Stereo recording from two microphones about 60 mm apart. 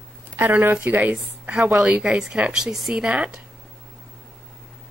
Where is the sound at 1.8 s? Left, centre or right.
Centre.